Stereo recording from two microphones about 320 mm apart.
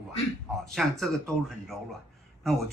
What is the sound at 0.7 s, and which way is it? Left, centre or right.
Speech, centre.